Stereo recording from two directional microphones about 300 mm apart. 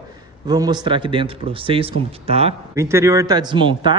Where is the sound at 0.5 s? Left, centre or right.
Centre.